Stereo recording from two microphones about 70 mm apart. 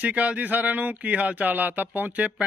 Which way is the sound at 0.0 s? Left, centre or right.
Centre.